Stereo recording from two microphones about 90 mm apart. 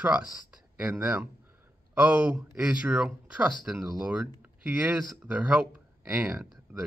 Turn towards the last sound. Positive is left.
turn(degrees=-15)  # may be behind; listen again after turning